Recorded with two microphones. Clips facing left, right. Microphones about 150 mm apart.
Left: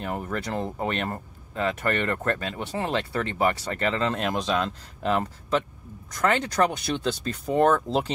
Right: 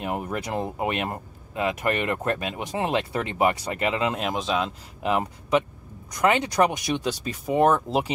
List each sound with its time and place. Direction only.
0.0 s speech: 15° right (ahead or behind)